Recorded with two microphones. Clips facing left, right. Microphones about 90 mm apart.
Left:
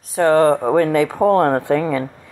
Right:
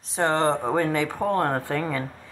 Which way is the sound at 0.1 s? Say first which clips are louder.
Left 9 dB; 5° left (ahead or behind).